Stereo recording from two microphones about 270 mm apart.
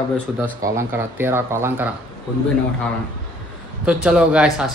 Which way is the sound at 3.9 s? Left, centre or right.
Centre.